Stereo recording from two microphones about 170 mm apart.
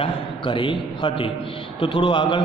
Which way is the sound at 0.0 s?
30° left (ahead or behind).